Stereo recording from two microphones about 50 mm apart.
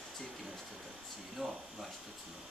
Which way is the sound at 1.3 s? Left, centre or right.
Centre.